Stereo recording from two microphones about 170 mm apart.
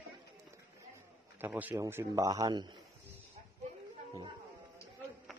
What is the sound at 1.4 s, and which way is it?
A man's voice, 10° right (ahead or behind).